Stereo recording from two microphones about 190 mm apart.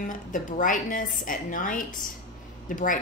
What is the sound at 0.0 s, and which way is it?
A woman's voice, 45° left (ahead or behind).